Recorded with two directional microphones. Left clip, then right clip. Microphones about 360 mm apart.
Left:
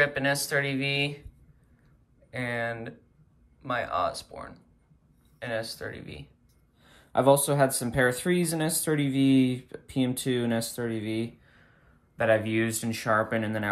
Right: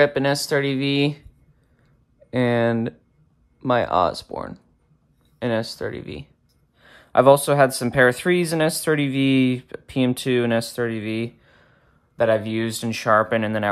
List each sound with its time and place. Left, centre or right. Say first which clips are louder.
0.0 s speech: right 7 dB; centre
2.3 s speech: right 11 dB; centre